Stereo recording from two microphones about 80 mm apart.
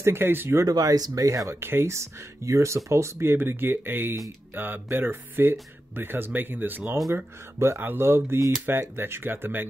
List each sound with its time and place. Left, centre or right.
0.0 s speech: right
0.6 s speech: right